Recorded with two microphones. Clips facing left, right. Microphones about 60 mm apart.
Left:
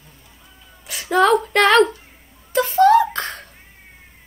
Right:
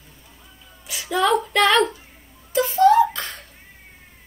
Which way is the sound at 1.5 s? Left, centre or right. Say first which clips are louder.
Left 4 dB; left.